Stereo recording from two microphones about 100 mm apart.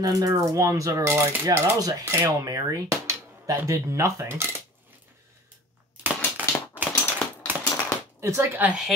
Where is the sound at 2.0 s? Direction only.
25° right (ahead or behind).